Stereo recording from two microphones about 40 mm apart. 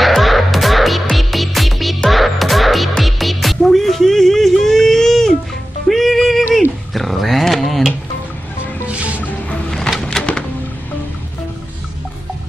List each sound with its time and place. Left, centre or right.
0.0 s music: centre
6.9 s a sound: centre
8.8 s music: right
10.0 s music: left